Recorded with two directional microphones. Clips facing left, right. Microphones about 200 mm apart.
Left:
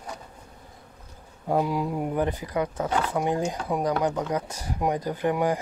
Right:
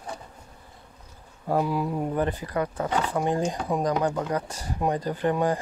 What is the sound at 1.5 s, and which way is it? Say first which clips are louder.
Speech: even; 15° left (ahead or behind).